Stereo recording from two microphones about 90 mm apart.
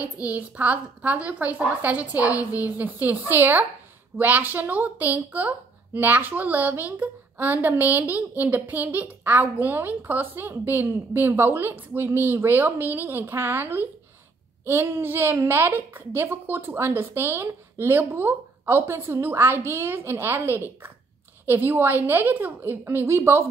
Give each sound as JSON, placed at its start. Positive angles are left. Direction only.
{"t": 0.3, "sound": "a woman's voice", "side_deg": -15}